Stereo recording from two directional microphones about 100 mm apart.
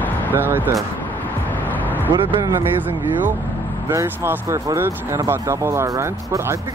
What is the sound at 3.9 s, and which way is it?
Speech, 30° right (ahead or behind).